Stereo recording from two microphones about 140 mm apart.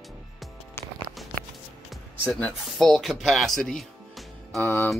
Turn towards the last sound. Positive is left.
turn(degrees=15)  # may be behind; listen again after turning